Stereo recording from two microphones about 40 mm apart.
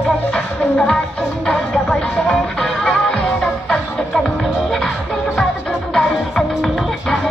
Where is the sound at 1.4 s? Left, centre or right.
Centre.